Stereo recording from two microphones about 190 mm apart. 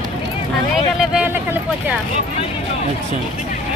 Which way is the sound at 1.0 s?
5° right (ahead or behind).